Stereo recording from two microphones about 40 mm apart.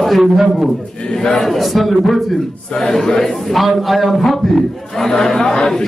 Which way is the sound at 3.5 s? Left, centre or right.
Centre.